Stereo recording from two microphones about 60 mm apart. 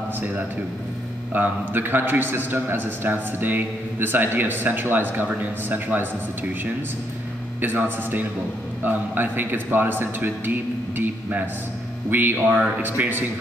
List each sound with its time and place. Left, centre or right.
1.3 s a man's voice: right
7.6 s a man's voice: right